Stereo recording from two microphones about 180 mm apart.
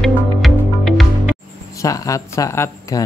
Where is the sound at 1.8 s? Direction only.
20° left (ahead or behind).